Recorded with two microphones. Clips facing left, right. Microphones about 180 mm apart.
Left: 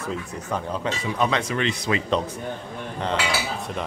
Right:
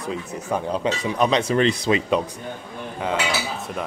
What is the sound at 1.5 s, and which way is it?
Speech, 35° right (ahead or behind).